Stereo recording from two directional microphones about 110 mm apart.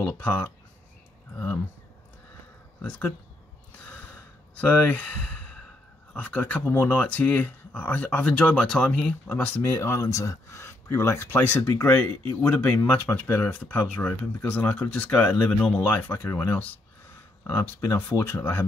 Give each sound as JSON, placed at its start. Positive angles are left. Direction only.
{"t": 0.0, "sound": "speech", "side_deg": 15}
{"t": 2.8, "sound": "speech", "side_deg": 15}
{"t": 3.8, "sound": "sigh", "side_deg": 10}
{"t": 6.1, "sound": "speech", "side_deg": 15}
{"t": 9.7, "sound": "speech", "side_deg": 30}